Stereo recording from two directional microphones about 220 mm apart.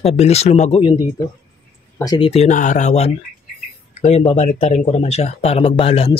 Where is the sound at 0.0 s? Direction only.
30° left (ahead or behind).